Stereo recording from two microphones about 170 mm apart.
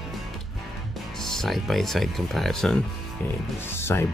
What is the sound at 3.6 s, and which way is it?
Speech, 15° left (ahead or behind).